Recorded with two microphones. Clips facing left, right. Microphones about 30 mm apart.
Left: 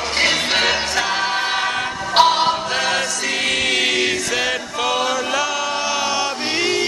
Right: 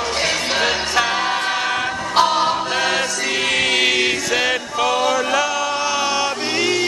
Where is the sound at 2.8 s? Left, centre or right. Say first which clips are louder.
Right 1 dB; centre.